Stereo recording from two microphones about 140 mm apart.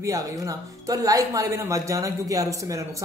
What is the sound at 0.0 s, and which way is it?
A man's voice, 25° right (ahead or behind).